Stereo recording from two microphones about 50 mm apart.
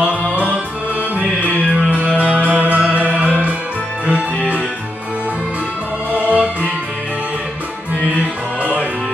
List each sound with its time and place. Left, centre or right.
0.2 s music: left
1.1 s music: right
6.1 s music: right